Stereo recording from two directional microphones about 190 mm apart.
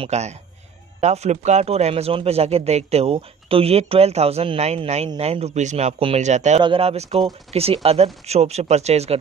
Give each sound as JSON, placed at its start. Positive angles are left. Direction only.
{"t": 0.0, "sound": "speech", "side_deg": -35}